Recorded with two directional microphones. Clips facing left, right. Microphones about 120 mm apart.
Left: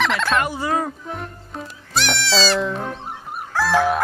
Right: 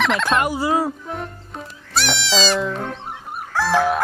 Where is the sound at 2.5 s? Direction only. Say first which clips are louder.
Even; centre (ahead or behind).